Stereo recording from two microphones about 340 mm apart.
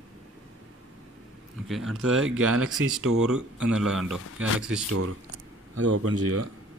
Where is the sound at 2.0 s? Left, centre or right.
Right.